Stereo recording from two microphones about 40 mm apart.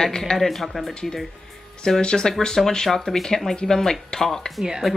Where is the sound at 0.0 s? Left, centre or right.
Centre.